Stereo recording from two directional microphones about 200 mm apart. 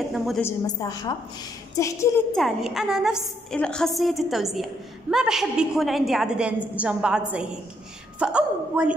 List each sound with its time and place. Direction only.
0.4 s a woman's voice: 15° left (ahead or behind)
2.3 s a woman's voice: centre (ahead or behind)